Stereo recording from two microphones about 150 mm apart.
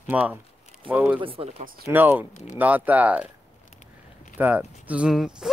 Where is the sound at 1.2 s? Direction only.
35° right (ahead or behind).